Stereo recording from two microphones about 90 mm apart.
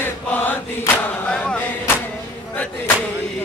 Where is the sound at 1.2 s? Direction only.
15° left (ahead or behind).